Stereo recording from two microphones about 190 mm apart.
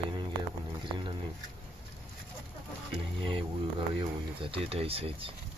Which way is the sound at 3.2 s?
25° right (ahead or behind).